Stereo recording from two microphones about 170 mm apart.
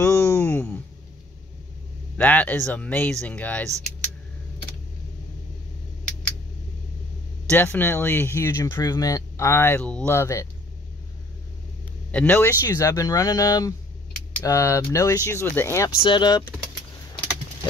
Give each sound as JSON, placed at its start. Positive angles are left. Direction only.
{"t": 0.0, "sound": "a sound", "side_deg": 15}
{"t": 2.1, "sound": "speech", "side_deg": 10}
{"t": 7.4, "sound": "speech", "side_deg": 10}
{"t": 12.1, "sound": "speech", "side_deg": 10}
{"t": 16.0, "sound": "speech", "side_deg": 25}